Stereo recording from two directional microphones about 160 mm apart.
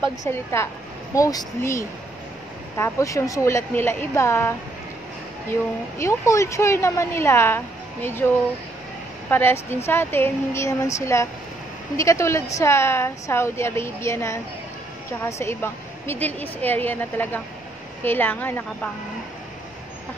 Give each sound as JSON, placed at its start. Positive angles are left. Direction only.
{"t": 0.0, "sound": "a woman's voice", "side_deg": 15}
{"t": 5.9, "sound": "a woman's voice", "side_deg": 20}
{"t": 9.3, "sound": "a woman's voice", "side_deg": 15}